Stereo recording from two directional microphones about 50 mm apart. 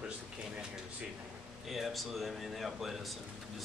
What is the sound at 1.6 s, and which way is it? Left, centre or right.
Speech, centre.